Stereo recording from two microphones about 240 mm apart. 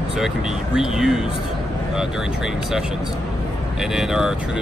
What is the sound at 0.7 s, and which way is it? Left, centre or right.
Speech, centre.